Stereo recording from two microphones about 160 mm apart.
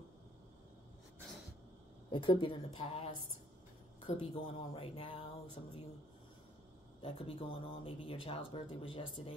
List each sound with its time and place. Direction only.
2.0 s speech: 30° left (ahead or behind)
7.0 s speech: 35° left (ahead or behind)